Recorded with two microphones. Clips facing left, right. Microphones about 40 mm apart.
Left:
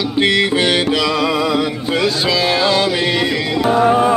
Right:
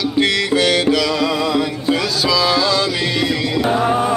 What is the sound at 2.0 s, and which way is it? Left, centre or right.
Music, left.